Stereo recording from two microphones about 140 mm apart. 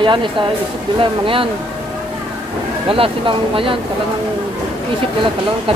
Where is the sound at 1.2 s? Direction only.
40° right (ahead or behind).